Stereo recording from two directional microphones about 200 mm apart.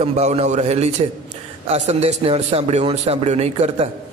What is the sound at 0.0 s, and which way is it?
A man's voice, 35° right (ahead or behind).